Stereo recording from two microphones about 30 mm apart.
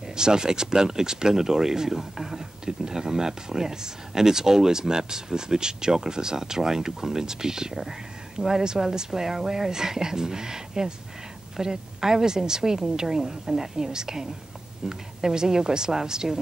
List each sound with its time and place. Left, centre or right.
0.1 s speech: right